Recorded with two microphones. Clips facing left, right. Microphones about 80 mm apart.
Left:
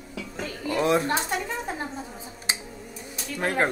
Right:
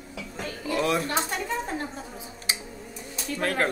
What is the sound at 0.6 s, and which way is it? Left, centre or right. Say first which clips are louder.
Speech: left 3 dB; left.